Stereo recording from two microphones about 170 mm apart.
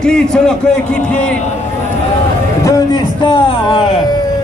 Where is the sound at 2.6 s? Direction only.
25° left (ahead or behind).